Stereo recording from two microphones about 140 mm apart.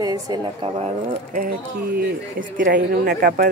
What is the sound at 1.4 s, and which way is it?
Speech, 90° right.